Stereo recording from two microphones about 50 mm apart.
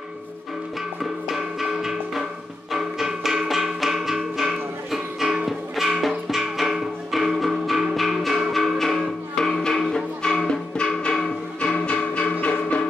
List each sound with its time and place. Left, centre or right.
1.3 s music: centre
11.6 s music: left